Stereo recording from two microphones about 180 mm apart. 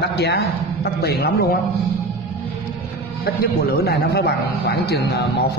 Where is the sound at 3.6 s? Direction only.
60° left (ahead or behind).